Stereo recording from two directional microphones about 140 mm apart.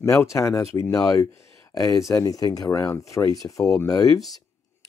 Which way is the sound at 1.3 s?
20° left (ahead or behind).